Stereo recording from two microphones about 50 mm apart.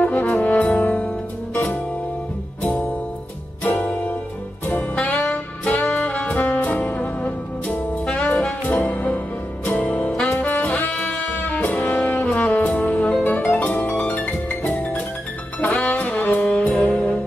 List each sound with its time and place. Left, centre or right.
0.0 s brass instrument: left
1.5 s music: left
3.6 s music: left
5.3 s saxophone: left
8.0 s saxophone: left
8.6 s music: left
10.3 s saxophone: left
10.9 s music: left
16.3 s saxophone: left